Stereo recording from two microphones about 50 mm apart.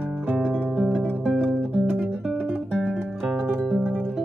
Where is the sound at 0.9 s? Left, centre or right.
Centre.